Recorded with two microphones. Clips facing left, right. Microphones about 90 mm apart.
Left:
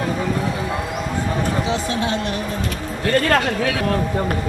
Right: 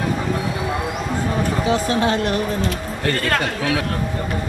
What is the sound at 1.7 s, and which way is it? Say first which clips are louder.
Speech: right 3 dB; 50° right (ahead or behind).